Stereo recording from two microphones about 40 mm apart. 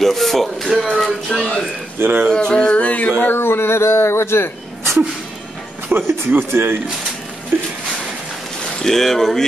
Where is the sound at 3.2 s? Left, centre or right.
Left.